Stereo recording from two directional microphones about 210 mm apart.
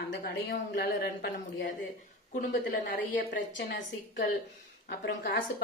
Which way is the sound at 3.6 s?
60° left (ahead or behind).